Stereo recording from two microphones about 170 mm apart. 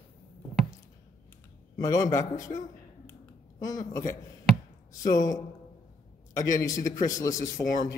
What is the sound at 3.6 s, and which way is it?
Speech, 20° left (ahead or behind).